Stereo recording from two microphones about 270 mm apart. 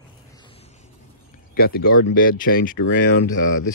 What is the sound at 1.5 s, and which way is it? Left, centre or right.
Speech, left.